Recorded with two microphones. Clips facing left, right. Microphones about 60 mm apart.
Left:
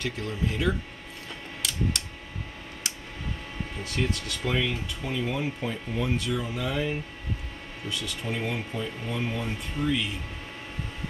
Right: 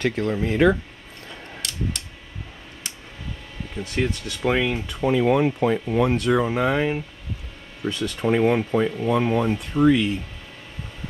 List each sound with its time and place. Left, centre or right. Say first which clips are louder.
0.0 s speech: right 8 dB; right
1.6 s a sound: even; centre
3.8 s speech: right 5 dB; right